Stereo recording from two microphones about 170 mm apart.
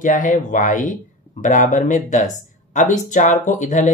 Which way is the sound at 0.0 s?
50° left (ahead or behind).